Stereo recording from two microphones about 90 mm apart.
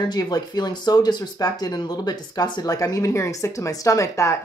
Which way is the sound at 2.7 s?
40° left (ahead or behind).